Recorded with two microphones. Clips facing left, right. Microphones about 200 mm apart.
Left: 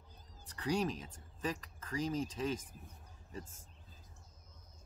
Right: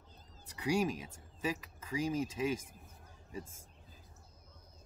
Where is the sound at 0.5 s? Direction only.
10° right (ahead or behind).